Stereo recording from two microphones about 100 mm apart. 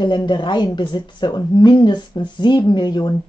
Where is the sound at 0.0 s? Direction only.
50° left (ahead or behind).